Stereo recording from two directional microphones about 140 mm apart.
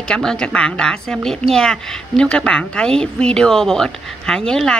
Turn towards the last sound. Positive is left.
turn(degrees=5)  # may be behind; listen again after turning